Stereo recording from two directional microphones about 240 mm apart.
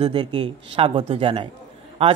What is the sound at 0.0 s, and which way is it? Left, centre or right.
Speech, centre.